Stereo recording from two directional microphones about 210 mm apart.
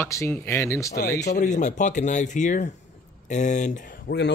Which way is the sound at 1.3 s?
35° left (ahead or behind).